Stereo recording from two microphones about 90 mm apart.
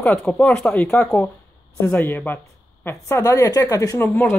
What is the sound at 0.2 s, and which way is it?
Speech, 10° left (ahead or behind).